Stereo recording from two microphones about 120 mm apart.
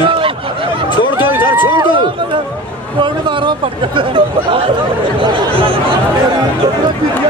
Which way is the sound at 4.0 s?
45° right (ahead or behind).